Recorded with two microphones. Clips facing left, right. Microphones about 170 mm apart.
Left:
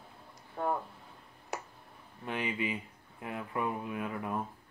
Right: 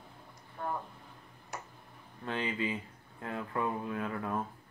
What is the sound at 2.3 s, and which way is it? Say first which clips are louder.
Speech: even; 15° left (ahead or behind).